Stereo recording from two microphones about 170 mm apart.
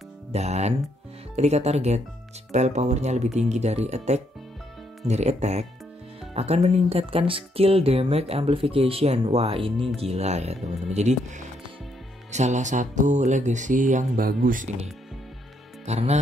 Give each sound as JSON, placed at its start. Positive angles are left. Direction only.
{"t": 0.3, "sound": "speech", "side_deg": -40}
{"t": 15.8, "sound": "speech", "side_deg": -40}